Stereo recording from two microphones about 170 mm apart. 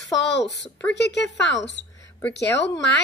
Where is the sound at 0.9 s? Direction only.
90° left.